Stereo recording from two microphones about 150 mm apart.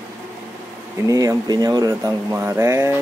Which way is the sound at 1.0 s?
25° right (ahead or behind).